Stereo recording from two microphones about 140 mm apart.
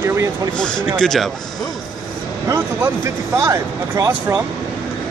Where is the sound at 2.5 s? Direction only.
25° right (ahead or behind).